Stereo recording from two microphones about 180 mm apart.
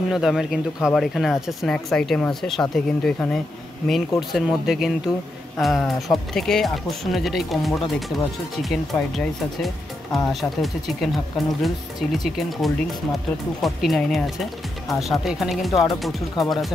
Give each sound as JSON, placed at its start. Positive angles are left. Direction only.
{"t": 0.1, "sound": "speech", "side_deg": 0}
{"t": 4.3, "sound": "speech", "side_deg": 0}